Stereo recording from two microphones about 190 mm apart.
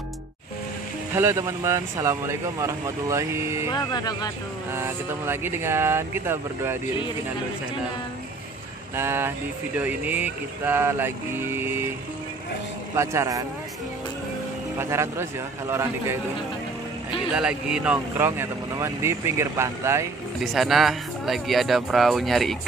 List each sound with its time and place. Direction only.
1.1 s speech: 15° right (ahead or behind)
3.7 s speech: 20° left (ahead or behind)
4.7 s speech: 10° right (ahead or behind)
8.9 s speech: 10° right (ahead or behind)
12.9 s speech: 15° right (ahead or behind)
14.8 s speech: 15° right (ahead or behind)
17.3 s speech: 5° right (ahead or behind)
20.3 s speech: centre (ahead or behind)